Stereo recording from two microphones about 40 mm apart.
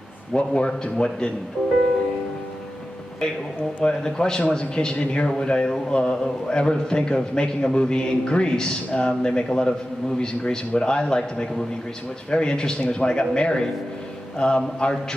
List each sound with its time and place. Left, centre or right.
0.3 s a man's voice: left
3.8 s a man's voice: centre
4.9 s a man's voice: left
5.4 s a man's voice: left